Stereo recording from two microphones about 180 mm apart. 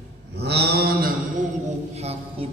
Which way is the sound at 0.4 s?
65° right (ahead or behind).